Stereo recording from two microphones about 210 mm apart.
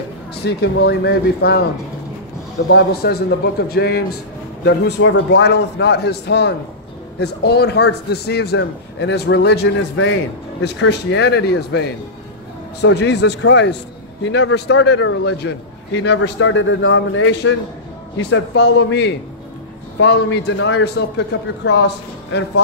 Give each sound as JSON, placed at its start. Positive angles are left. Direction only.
{"t": 0.3, "sound": "a man's voice", "side_deg": 50}
{"t": 2.7, "sound": "a man's voice", "side_deg": 50}